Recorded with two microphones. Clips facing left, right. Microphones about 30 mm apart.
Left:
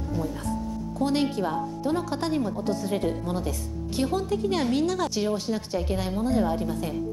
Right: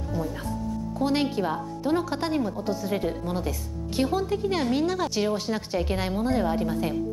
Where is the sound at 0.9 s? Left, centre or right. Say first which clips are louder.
Even; centre.